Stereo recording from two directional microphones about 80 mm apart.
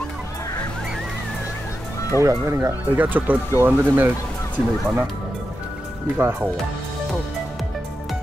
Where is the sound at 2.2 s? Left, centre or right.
Right.